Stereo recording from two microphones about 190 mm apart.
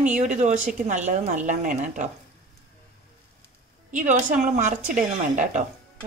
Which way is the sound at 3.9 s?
40° right (ahead or behind).